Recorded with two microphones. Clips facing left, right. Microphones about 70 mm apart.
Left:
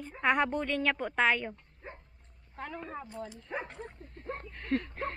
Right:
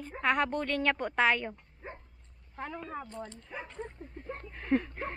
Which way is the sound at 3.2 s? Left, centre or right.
Centre.